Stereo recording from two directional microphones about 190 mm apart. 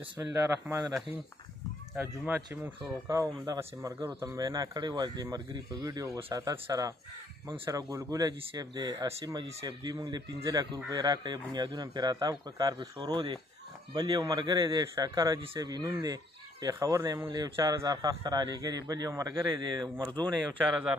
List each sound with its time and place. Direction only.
0.0 s speech: 10° right (ahead or behind)
2.2 s speech: 10° right (ahead or behind)
20.7 s speech: 5° right (ahead or behind)